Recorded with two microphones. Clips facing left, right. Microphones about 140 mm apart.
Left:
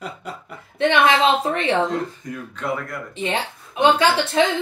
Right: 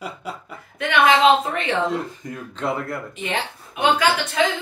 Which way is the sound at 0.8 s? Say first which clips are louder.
Even; 30° left (ahead or behind).